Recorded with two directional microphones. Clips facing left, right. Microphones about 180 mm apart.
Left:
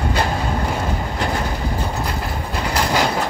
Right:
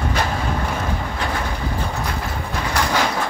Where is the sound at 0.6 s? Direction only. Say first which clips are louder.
Left 2 dB; 15° left (ahead or behind).